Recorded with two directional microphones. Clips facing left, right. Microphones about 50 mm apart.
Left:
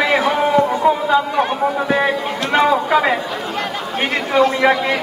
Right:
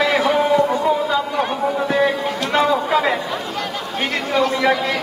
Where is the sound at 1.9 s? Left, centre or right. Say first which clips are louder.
Even; left.